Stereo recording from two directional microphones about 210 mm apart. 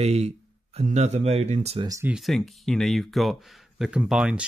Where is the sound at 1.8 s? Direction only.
15° right (ahead or behind).